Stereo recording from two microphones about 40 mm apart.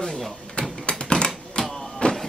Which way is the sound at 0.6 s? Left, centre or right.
Left.